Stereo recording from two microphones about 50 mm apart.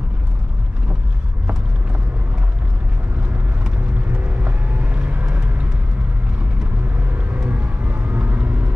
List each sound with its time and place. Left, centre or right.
4.1 s vehicle: right
7.4 s vehicle: right